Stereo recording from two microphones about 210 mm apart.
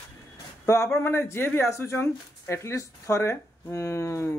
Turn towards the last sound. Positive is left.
turn(degrees=15)  # may be behind; listen again after turning